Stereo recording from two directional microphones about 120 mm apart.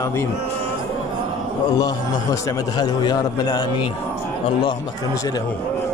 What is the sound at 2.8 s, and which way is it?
Speech, 35° left (ahead or behind).